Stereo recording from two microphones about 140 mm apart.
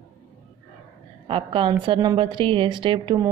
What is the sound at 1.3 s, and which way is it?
A woman's voice, 35° right (ahead or behind).